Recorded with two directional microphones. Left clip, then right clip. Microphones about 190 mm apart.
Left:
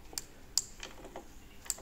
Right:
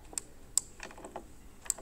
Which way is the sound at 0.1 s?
30° right (ahead or behind).